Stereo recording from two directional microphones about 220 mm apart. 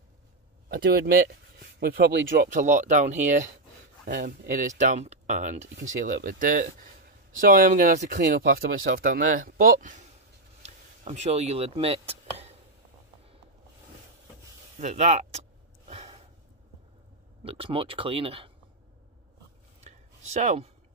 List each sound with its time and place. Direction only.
0.7 s speech: 40° right (ahead or behind)
10.6 s a sound: 30° right (ahead or behind)
14.8 s speech: 30° right (ahead or behind)
15.9 s gasp: 30° right (ahead or behind)
17.4 s speech: 25° right (ahead or behind)
19.8 s a sound: 30° right (ahead or behind)